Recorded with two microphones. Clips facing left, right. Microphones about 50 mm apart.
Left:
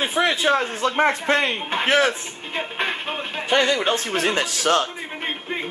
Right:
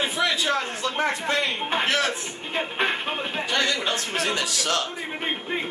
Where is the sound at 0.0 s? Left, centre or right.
Left.